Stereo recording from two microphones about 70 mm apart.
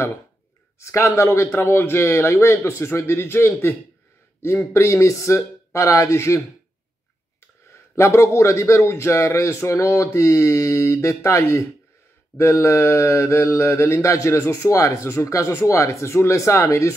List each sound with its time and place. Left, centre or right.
0.7 s a man's voice: left
4.7 s mantra: left
7.9 s mantra: left